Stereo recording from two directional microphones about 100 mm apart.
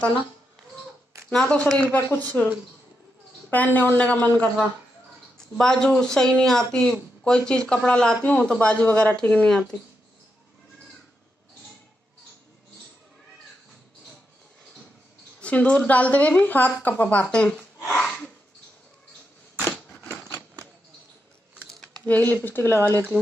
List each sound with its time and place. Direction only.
1.3 s speech: 5° left (ahead or behind)
3.4 s speech: 15° left (ahead or behind)
15.4 s a woman's voice: 15° left (ahead or behind)
19.6 s crushing: 10° left (ahead or behind)
22.0 s speech: 20° left (ahead or behind)